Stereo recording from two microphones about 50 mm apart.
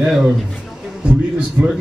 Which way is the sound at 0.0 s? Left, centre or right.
Centre.